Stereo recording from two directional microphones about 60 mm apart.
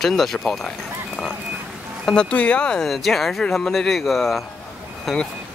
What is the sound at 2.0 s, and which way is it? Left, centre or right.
Speech, centre.